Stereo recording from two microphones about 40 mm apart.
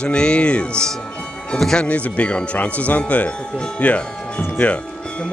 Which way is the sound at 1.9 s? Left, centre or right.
Left.